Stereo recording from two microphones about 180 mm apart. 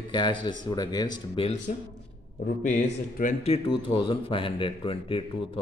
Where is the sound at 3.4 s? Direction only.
30° left (ahead or behind).